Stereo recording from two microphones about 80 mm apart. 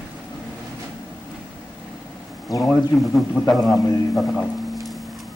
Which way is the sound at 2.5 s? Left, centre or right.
Centre.